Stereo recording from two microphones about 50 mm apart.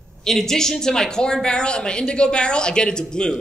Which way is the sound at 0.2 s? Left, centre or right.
Centre.